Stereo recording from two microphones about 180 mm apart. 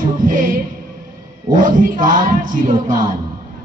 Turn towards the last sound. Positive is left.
turn(degrees=-45)  # may be behind; listen again after turning